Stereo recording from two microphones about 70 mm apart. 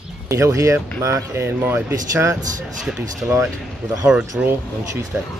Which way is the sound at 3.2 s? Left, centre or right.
Right.